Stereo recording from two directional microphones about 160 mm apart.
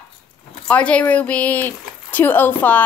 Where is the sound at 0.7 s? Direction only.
10° left (ahead or behind).